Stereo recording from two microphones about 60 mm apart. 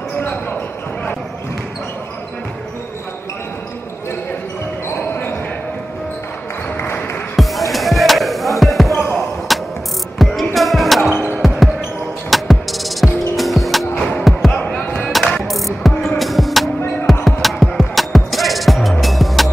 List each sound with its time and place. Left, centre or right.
0.2 s basketball bounce: left
4.8 s basketball bounce: left
7.3 s basketball bounce: centre
10.1 s music: centre
11.3 s basketball bounce: centre
12.3 s music: centre
13.9 s music: centre
14.5 s basketball bounce: left
15.0 s music: centre